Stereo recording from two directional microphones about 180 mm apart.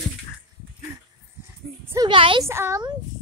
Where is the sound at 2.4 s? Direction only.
15° right (ahead or behind).